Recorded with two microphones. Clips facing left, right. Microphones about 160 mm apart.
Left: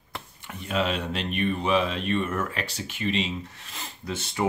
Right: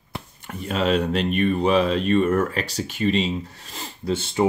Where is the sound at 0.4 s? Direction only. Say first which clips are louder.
Right 3 dB; 45° right (ahead or behind).